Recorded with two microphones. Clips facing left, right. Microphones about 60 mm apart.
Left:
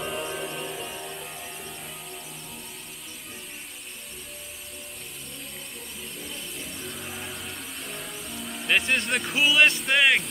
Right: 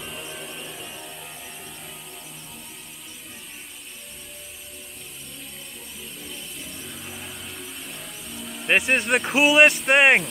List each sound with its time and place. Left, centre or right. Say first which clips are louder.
0.0 s music: left 5 dB; centre
6.2 s vehicle: left 1 dB; centre
8.6 s speech: right 4 dB; right
9.8 s speech: right 5 dB; right